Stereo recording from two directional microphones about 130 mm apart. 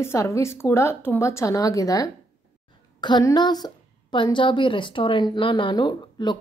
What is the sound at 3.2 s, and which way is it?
A woman's voice, 30° left (ahead or behind).